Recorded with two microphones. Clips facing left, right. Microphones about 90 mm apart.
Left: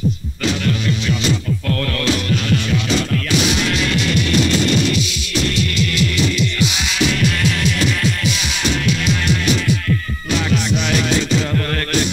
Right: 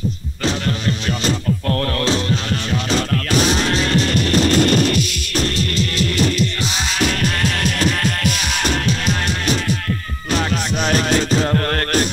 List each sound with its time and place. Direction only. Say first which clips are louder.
0.4 s music: left 1 dB; 35° right (ahead or behind)